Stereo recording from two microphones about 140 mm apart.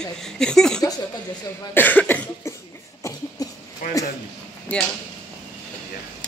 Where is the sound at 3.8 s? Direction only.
90° left.